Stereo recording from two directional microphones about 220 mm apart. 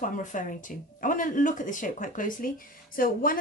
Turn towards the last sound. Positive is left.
turn(degrees=40)  # may be behind; listen again after turning